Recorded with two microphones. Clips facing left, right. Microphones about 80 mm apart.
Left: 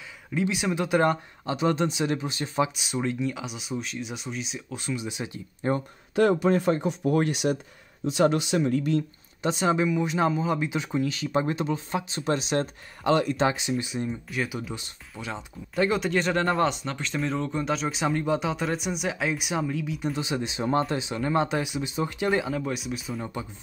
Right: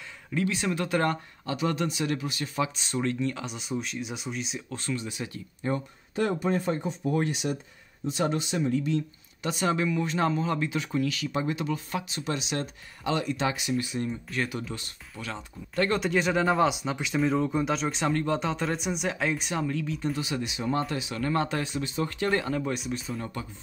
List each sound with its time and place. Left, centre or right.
0.3 s speech: centre
2.7 s speech: centre
4.7 s speech: centre
5.6 s speech: left
6.1 s speech: left
9.4 s speech: left
13.4 s speech: left
16.0 s speech: centre
20.2 s speech: left; by 23.2 s centre